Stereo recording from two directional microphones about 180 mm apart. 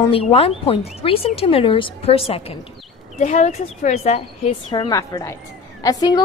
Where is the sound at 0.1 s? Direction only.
35° left (ahead or behind).